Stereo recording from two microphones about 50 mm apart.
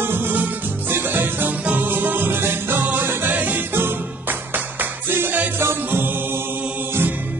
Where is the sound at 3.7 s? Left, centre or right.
Right.